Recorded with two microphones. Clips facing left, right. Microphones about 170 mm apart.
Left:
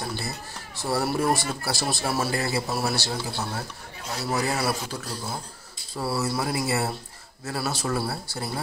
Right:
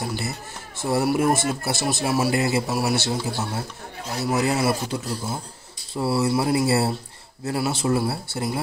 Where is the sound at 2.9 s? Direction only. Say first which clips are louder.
Right 5 dB; 25° right (ahead or behind).